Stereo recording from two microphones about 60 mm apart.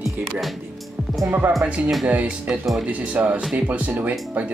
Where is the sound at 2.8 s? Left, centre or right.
Right.